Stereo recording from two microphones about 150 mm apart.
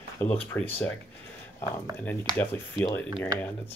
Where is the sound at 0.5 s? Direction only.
15° left (ahead or behind).